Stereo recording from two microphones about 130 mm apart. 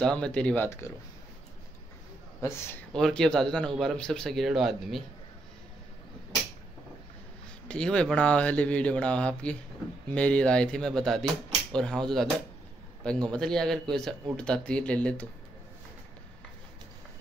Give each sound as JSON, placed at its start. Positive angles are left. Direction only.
{"t": 0.0, "sound": "speech", "side_deg": 5}
{"t": 0.7, "sound": "speech", "side_deg": 20}
{"t": 2.9, "sound": "a man's voice", "side_deg": 5}
{"t": 7.6, "sound": "a man's voice", "side_deg": 10}